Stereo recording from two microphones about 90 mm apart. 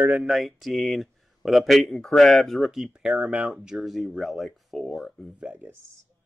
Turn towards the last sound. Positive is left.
turn(degrees=-20)  # may be behind; listen again after turning